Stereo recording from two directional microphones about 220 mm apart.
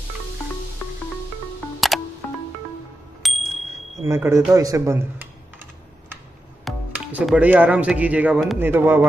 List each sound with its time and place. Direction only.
1.9 s music: centre (ahead or behind)
3.2 s a sound: centre (ahead or behind)
4.0 s speech: 10° right (ahead or behind)
6.6 s speech: 5° right (ahead or behind)